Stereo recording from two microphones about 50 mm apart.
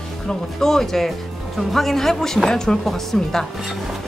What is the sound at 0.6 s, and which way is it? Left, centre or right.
Speech, centre.